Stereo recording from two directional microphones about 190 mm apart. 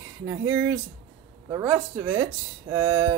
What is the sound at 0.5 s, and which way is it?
Speech, 15° right (ahead or behind).